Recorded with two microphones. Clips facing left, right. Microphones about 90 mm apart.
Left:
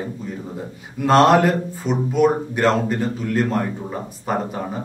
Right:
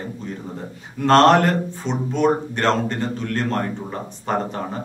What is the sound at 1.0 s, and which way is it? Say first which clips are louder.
A man's voice: even; 5° left (ahead or behind).